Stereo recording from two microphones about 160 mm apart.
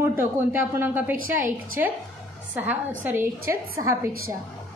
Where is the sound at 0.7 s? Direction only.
15° right (ahead or behind).